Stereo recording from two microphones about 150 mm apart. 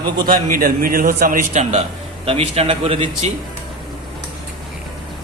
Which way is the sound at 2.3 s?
40° right (ahead or behind).